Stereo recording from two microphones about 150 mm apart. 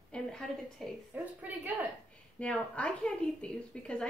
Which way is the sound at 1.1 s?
10° right (ahead or behind).